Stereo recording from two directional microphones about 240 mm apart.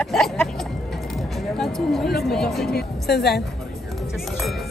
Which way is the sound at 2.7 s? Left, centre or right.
Left.